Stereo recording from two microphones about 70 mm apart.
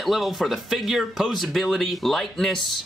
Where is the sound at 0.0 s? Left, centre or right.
Centre.